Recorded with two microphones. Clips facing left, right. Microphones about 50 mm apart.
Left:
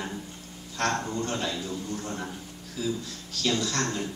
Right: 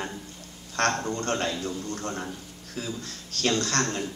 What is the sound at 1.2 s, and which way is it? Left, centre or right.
Speech, right.